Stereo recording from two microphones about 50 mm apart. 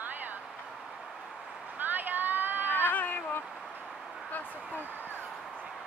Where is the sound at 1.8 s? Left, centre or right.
Right.